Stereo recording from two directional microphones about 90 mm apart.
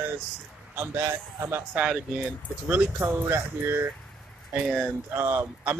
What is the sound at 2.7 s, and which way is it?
Speech, 20° right (ahead or behind).